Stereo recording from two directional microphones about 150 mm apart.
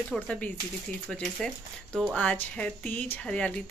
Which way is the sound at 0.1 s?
10° left (ahead or behind).